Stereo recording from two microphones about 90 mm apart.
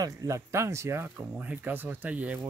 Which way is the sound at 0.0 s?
35° right (ahead or behind).